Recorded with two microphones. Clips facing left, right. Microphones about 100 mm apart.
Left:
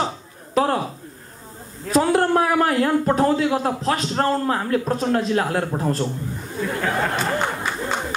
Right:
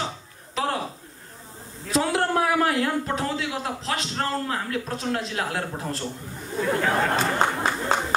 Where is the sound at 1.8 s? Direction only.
45° left (ahead or behind).